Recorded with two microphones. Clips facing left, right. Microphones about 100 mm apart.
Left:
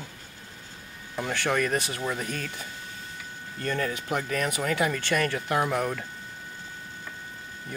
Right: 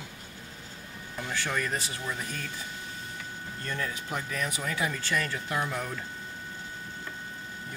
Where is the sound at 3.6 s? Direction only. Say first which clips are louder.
Left 7 dB; 60° left (ahead or behind).